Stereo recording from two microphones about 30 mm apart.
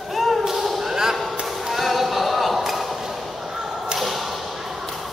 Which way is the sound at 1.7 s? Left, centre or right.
Centre.